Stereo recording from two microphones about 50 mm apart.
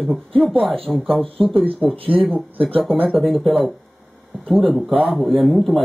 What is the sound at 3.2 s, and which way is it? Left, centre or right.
Speech, centre.